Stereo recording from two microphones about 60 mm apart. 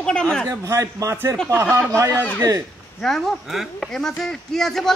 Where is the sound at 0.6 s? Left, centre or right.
Right.